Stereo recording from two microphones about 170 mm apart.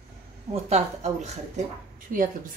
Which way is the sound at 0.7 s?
40° right (ahead or behind).